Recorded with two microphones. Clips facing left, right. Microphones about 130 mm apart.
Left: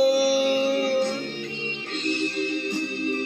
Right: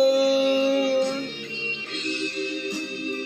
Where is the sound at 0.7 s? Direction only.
60° left (ahead or behind).